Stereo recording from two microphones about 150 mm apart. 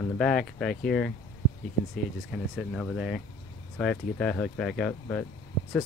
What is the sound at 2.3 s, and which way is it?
Speech, centre (ahead or behind).